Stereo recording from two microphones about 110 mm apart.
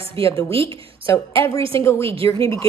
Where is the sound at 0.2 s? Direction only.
55° right (ahead or behind).